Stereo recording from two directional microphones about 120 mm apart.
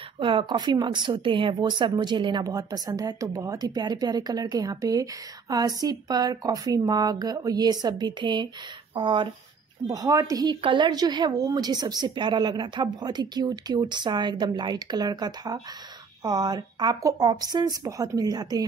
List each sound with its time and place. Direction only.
0.2 s a woman's voice: 45° right (ahead or behind)
9.8 s a woman's voice: 30° right (ahead or behind)